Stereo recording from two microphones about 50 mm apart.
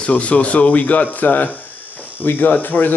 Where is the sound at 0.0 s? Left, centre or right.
Left.